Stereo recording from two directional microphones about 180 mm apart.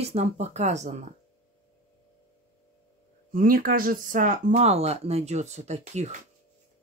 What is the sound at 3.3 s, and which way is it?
Speech, 50° right (ahead or behind).